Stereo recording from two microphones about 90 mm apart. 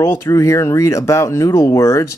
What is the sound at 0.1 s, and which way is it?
Speech, 35° left (ahead or behind).